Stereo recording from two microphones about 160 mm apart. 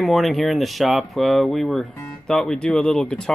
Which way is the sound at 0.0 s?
Centre (ahead or behind).